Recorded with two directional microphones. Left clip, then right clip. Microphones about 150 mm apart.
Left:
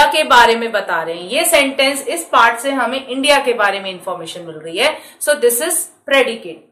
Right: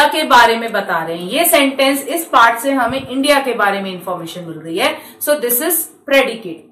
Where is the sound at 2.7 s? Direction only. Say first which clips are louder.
Right 1 dB; 40° left (ahead or behind).